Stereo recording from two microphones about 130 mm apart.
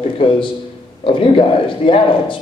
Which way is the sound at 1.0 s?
45° left (ahead or behind).